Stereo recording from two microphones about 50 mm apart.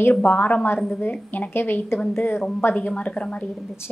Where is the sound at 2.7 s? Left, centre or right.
Left.